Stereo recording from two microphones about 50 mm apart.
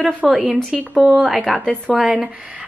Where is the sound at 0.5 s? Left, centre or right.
Centre.